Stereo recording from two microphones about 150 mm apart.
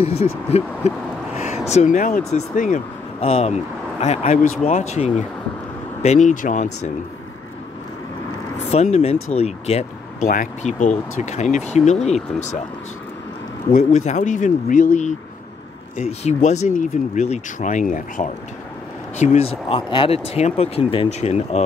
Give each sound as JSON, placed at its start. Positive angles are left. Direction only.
{"t": 0.0, "sound": "speech", "side_deg": 45}
{"t": 3.2, "sound": "speech", "side_deg": 40}
{"t": 8.7, "sound": "speech", "side_deg": 50}
{"t": 10.3, "sound": "speech", "side_deg": 55}
{"t": 13.7, "sound": "speech", "side_deg": 50}
{"t": 19.1, "sound": "speech", "side_deg": 50}